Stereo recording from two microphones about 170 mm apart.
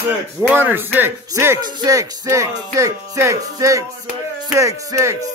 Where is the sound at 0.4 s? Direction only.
10° right (ahead or behind).